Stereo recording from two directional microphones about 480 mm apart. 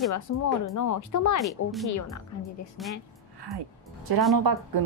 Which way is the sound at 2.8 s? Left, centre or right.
Centre.